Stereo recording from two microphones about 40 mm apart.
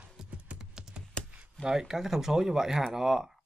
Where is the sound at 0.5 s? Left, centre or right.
Centre.